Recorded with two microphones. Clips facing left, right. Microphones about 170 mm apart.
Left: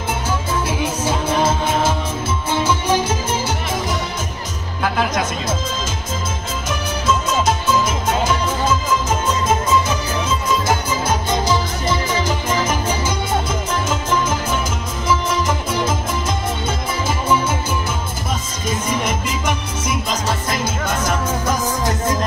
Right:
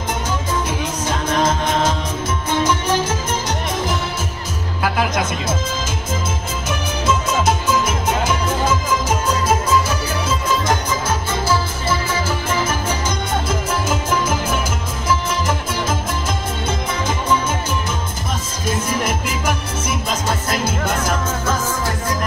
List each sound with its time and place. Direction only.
0.7 s music: 10° left (ahead or behind)
11.1 s music: 15° left (ahead or behind)
13.5 s music: 5° right (ahead or behind)
18.7 s music: 5° right (ahead or behind)
21.3 s music: 15° left (ahead or behind)